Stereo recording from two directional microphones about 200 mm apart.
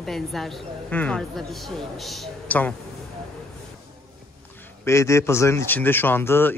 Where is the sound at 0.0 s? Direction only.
Centre (ahead or behind).